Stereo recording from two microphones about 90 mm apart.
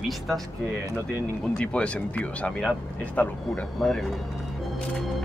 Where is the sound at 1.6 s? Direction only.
10° left (ahead or behind).